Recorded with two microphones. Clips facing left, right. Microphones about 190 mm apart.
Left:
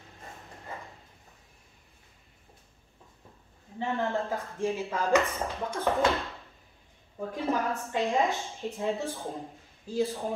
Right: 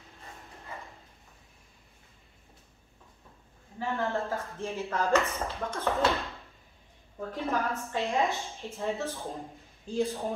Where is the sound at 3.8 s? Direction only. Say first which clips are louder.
Left 1 dB; 15° left (ahead or behind).